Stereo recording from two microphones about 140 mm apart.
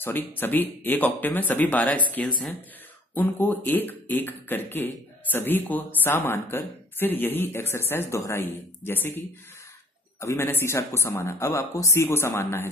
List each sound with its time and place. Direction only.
0.0 s speech: 15° left (ahead or behind)
10.2 s speech: 20° left (ahead or behind)